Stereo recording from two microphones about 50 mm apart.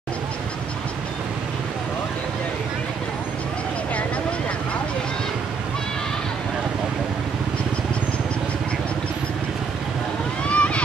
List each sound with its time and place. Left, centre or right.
10.5 s vehicle: left